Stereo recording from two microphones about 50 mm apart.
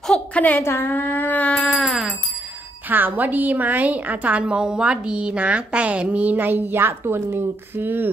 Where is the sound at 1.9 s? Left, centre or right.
Centre.